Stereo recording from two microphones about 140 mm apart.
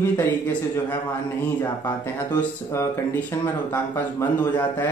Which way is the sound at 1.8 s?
15° left (ahead or behind).